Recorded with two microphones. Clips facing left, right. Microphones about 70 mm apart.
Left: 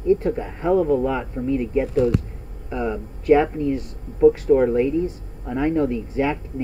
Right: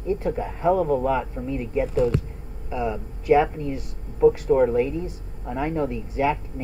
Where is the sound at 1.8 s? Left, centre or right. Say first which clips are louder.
Right 1 dB; right.